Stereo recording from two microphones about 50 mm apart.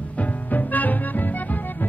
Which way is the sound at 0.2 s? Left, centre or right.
Left.